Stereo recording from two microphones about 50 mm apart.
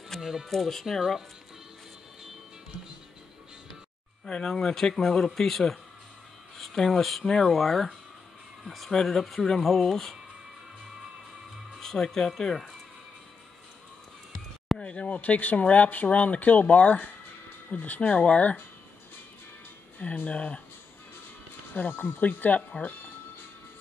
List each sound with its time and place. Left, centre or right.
0.2 s speech: centre
0.5 s speech: centre
4.3 s speech: centre
11.8 s speech: centre
14.8 s speech: left
20.2 s speech: left
21.7 s speech: left